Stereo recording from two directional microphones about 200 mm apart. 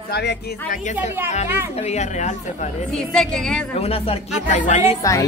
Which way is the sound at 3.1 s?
5° left (ahead or behind).